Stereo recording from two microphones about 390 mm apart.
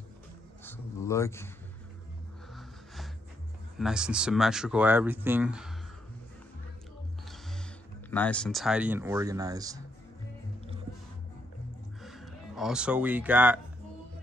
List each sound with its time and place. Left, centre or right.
0.7 s speech: centre
3.7 s speech: centre
8.1 s speech: centre
12.0 s a sound: centre